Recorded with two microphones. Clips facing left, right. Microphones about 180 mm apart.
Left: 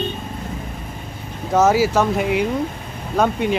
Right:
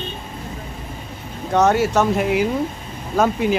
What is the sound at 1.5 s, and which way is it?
Speech, centre (ahead or behind).